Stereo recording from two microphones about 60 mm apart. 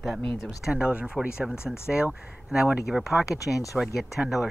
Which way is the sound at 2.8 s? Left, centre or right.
Centre.